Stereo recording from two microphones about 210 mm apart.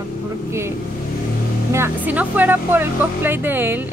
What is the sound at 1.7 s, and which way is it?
Speech, 10° right (ahead or behind).